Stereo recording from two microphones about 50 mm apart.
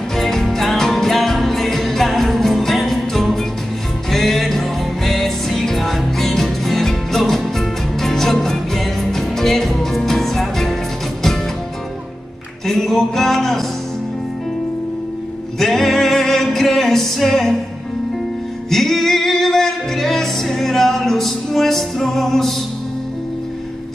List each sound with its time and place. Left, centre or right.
0.1 s music: centre
12.6 s music: centre
15.6 s music: centre
18.7 s music: centre